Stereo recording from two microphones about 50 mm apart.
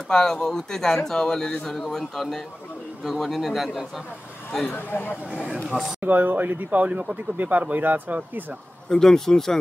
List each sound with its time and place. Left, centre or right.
0.1 s speech: centre
4.6 s speech: left
5.5 s speech: centre
5.9 s speech: right
8.8 s speech: centre